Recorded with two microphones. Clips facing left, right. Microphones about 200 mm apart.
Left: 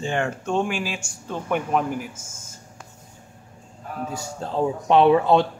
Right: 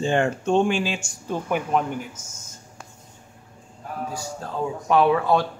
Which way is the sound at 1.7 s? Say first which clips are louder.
Even; 5° left (ahead or behind).